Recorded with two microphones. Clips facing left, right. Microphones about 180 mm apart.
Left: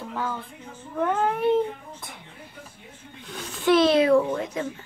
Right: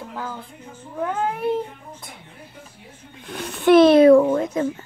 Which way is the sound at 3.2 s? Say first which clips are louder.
Right 5 dB; 65° right (ahead or behind).